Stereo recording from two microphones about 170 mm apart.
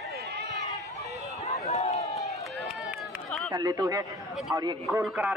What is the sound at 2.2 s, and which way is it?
Run, centre (ahead or behind).